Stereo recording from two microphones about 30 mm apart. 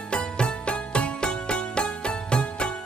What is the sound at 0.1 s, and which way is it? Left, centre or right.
Music, left.